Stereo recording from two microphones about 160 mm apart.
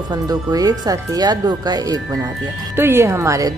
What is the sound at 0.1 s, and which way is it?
Speech, 25° right (ahead or behind).